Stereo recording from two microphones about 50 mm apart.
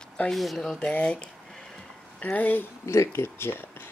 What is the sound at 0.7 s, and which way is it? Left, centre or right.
Speech, left.